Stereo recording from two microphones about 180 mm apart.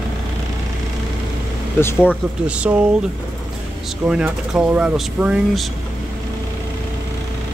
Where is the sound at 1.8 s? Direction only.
10° left (ahead or behind).